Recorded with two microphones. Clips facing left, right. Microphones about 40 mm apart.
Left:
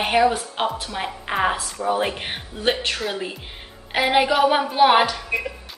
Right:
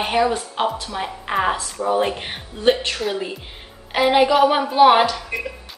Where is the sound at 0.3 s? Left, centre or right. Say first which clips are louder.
Right 2 dB; centre.